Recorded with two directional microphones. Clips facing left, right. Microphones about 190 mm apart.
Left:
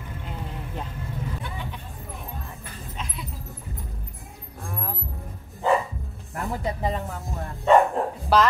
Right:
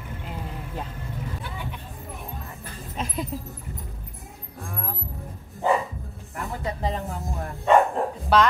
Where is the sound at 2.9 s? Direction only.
45° right (ahead or behind).